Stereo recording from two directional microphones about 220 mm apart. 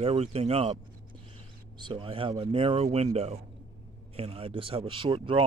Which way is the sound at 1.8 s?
20° right (ahead or behind).